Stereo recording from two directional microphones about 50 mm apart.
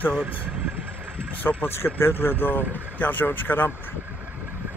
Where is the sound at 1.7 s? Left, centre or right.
Left.